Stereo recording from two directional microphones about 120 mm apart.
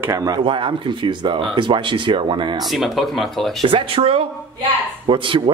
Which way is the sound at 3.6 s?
50° right (ahead or behind).